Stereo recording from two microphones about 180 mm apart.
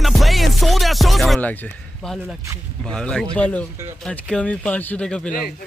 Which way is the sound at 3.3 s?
5° left (ahead or behind).